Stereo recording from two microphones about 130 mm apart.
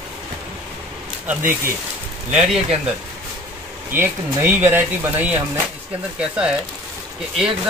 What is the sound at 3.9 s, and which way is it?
Speech, 15° right (ahead or behind).